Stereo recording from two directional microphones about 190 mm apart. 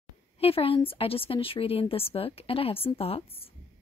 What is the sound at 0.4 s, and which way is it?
A woman's voice, 30° left (ahead or behind).